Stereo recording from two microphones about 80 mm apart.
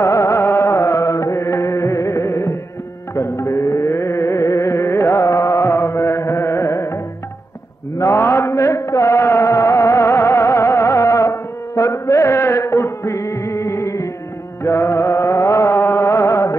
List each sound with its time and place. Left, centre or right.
0.0 s music: left
8.0 s music: left